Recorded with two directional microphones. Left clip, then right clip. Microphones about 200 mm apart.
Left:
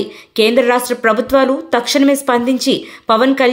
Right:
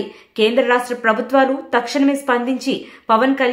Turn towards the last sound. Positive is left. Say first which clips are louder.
# left 3 dB
turn(degrees=20)  # may be behind; listen again after turning